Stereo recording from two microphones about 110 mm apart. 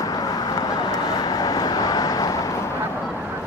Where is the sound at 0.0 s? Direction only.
35° left (ahead or behind).